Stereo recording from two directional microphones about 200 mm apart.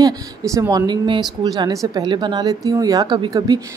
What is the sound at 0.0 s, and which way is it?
A woman's voice, 15° right (ahead or behind).